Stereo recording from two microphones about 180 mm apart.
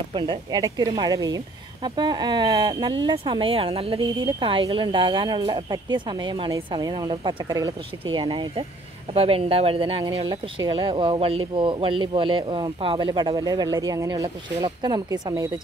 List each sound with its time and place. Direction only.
0.1 s speech: 25° right (ahead or behind)